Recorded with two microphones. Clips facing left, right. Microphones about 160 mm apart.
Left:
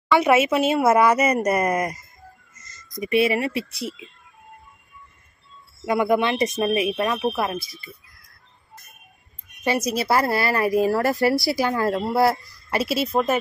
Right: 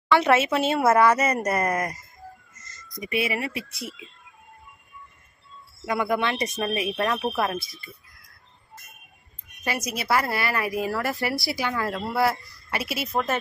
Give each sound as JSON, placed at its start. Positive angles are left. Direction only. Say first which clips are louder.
{"t": 0.1, "sound": "speech", "louder": "left 2 dB", "side_deg": 10}
{"t": 5.9, "sound": "speech", "louder": "left 5 dB", "side_deg": 20}
{"t": 6.9, "sound": "speech", "louder": "left 3 dB", "side_deg": 0}
{"t": 9.7, "sound": "a woman's voice", "louder": "left 5 dB", "side_deg": 30}
{"t": 12.9, "sound": "speech", "louder": "left 5 dB", "side_deg": 25}